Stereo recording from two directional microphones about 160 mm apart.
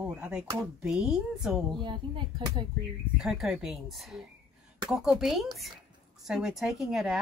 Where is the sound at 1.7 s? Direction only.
30° right (ahead or behind).